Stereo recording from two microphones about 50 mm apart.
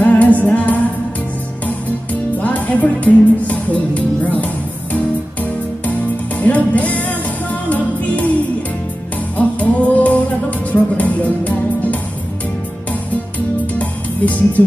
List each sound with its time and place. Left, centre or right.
0.0 s music: left
2.4 s music: left
9.4 s music: left
13.7 s music: left